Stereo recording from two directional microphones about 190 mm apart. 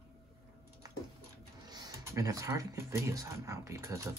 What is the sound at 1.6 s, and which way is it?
Speech, 20° right (ahead or behind).